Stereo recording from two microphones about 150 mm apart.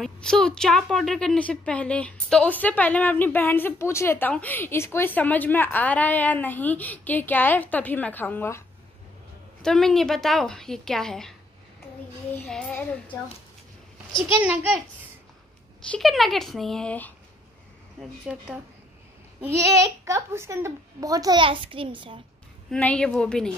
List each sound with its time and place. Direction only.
0.0 s a woman's voice: 5° left (ahead or behind)
9.6 s a woman's voice: 5° left (ahead or behind)
12.4 s a woman's voice: 5° left (ahead or behind)
14.3 s a child's voice: 15° right (ahead or behind)
15.9 s a woman's voice: centre (ahead or behind)
18.2 s a child's voice: 10° right (ahead or behind)
20.1 s a child's voice: 20° right (ahead or behind)
22.7 s a woman's voice: 5° left (ahead or behind)